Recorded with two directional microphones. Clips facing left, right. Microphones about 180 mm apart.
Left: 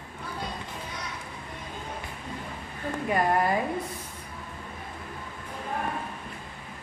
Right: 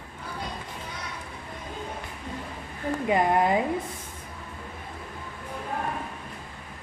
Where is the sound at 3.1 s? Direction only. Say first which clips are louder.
Right 2 dB; 20° right (ahead or behind).